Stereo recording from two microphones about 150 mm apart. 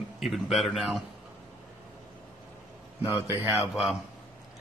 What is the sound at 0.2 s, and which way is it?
Speech, centre (ahead or behind).